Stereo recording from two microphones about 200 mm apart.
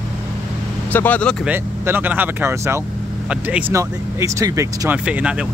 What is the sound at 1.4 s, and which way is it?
Speech, 10° right (ahead or behind).